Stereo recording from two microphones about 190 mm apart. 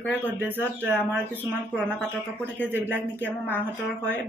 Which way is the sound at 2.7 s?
10° right (ahead or behind).